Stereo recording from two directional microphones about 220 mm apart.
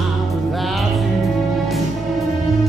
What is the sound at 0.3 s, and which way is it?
Music, centre (ahead or behind).